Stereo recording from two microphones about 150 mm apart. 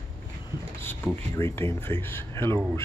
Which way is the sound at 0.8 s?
15° left (ahead or behind).